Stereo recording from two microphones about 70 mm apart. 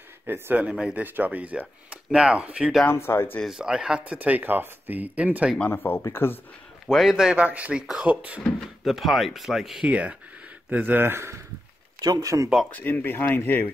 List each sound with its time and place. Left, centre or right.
0.3 s speech: right
0.7 s speech: centre
1.0 s speech: right
2.9 s speech: left
3.4 s speech: centre
4.0 s speech: right
5.7 s speech: left
6.9 s speech: centre
8.4 s speech: centre
9.8 s speech: centre; by 11.3 s right
12.0 s speech: right
12.7 s speech: left